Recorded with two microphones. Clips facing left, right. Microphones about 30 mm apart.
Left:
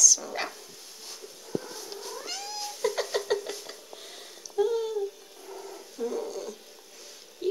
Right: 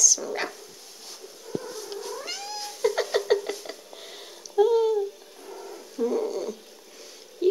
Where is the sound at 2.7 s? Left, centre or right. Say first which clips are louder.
Right 5 dB; centre.